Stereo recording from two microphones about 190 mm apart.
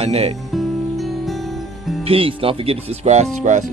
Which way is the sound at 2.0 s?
30° right (ahead or behind).